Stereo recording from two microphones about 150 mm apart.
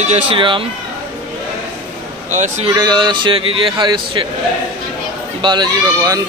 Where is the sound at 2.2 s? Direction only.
55° right (ahead or behind).